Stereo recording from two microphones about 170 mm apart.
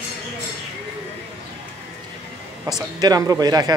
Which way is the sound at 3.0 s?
20° right (ahead or behind).